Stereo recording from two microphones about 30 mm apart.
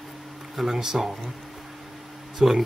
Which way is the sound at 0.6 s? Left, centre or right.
Centre.